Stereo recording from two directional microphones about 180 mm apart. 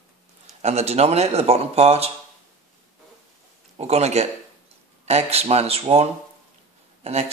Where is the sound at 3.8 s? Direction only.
35° right (ahead or behind).